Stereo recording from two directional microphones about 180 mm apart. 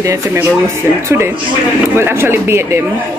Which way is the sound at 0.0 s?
15° right (ahead or behind).